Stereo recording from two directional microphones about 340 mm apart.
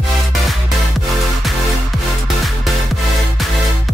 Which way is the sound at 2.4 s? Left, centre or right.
Centre.